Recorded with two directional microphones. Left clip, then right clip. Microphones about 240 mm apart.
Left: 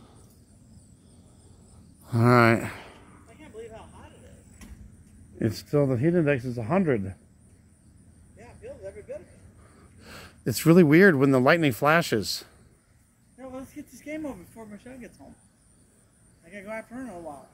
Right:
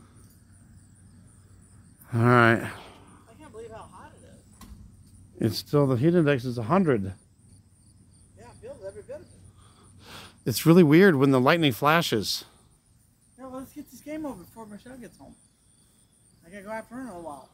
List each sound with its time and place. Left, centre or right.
2.0 s a sound: centre
3.3 s a sound: right
5.4 s speech: centre
8.4 s cricket: right
9.9 s speech: centre
13.4 s keys jangling: right
14.0 s speech: right
16.4 s speech: right